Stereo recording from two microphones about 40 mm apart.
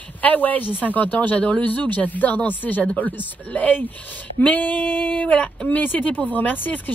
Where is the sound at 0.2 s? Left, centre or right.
Left.